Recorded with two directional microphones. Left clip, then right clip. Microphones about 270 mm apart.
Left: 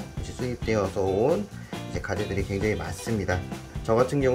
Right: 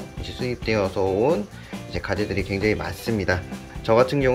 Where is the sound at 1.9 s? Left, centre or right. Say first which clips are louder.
Right 5 dB; centre.